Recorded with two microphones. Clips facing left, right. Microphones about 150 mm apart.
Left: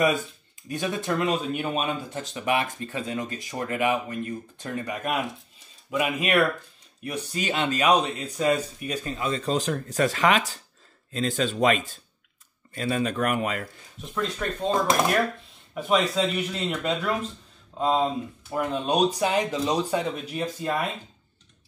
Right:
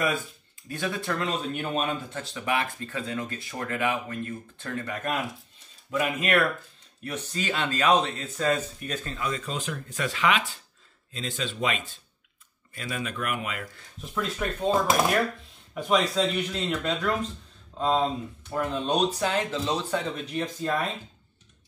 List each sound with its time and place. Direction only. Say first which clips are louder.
0.7 s speech: left 3 dB; 20° left (ahead or behind)
9.2 s speech: left 7 dB; 30° left (ahead or behind)
14.0 s speech: left 1 dB; 5° right (ahead or behind)